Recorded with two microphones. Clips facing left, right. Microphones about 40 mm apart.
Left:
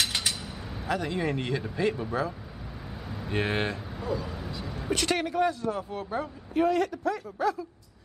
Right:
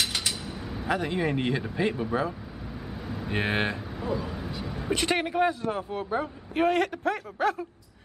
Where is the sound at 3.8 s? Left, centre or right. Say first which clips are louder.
Right 1 dB; centre.